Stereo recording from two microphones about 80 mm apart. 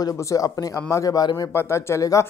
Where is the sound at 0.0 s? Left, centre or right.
Left.